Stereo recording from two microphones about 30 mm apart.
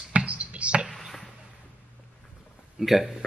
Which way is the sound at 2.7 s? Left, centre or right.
Centre.